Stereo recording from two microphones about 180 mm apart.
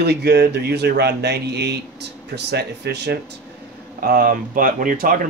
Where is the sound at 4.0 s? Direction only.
55° right (ahead or behind).